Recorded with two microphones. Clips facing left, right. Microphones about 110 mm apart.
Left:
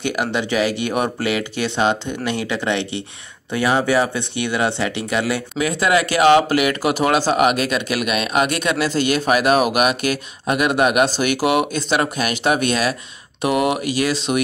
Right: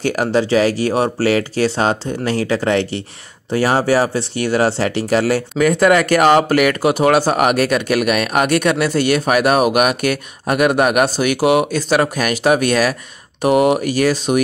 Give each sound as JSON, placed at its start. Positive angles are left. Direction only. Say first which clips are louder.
{"t": 0.0, "sound": "speech", "louder": "right 5 dB", "side_deg": -40}